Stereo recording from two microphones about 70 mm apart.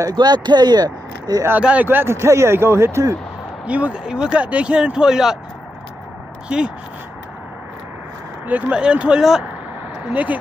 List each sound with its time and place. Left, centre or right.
0.1 s speech: right
1.6 s speech: centre
1.9 s speech: right
2.1 s speech: right
3.6 s speech: centre
6.5 s speech: centre
8.5 s speech: right